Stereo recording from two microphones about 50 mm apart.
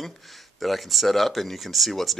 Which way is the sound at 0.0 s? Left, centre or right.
Centre.